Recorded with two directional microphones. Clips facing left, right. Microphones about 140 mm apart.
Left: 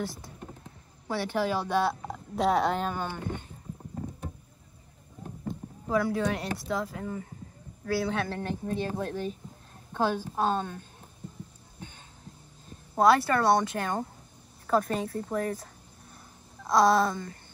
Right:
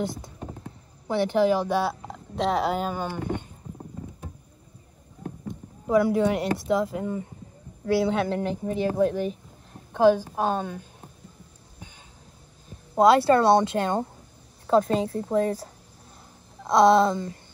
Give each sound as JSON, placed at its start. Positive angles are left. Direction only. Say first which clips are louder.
{"t": 1.0, "sound": "a woman's voice", "louder": "right 7 dB", "side_deg": -20}
{"t": 2.0, "sound": "speech", "louder": "even", "side_deg": 0}
{"t": 5.9, "sound": "a woman's voice", "louder": "right 6 dB", "side_deg": -20}
{"t": 12.9, "sound": "a woman's voice", "louder": "right 5 dB", "side_deg": -20}